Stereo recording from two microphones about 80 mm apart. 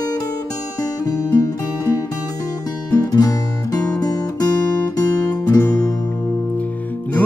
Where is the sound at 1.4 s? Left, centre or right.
Left.